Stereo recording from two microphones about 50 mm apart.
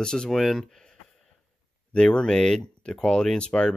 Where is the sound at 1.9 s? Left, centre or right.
Centre.